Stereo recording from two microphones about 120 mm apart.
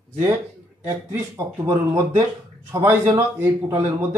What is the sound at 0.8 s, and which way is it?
A man's voice, 20° right (ahead or behind).